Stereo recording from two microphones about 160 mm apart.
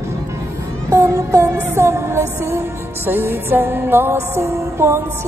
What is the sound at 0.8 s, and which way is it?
Music, 20° right (ahead or behind).